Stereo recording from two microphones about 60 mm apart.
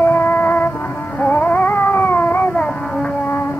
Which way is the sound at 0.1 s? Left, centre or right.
Left.